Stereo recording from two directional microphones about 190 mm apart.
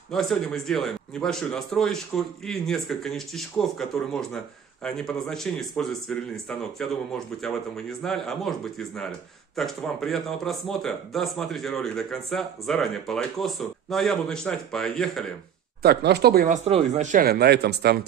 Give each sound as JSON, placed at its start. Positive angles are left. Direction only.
{"t": 0.1, "sound": "speech", "side_deg": 0}
{"t": 15.8, "sound": "speech", "side_deg": -60}
{"t": 16.6, "sound": "speech", "side_deg": -35}